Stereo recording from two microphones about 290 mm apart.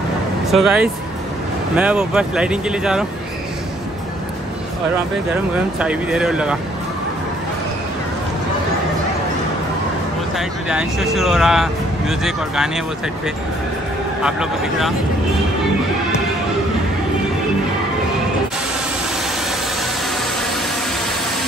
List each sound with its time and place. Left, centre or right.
0.5 s speech: centre
5.3 s speech: centre
10.3 s speech: centre
14.2 s speech: centre